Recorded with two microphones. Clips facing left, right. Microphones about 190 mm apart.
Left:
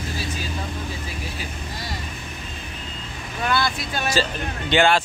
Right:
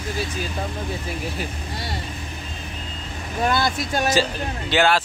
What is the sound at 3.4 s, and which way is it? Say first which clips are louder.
Speech: right 2 dB; 40° right (ahead or behind).